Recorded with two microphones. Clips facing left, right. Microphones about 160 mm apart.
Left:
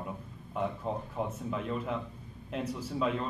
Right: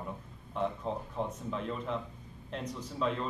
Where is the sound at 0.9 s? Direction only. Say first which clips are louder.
Left 1 dB; 5° left (ahead or behind).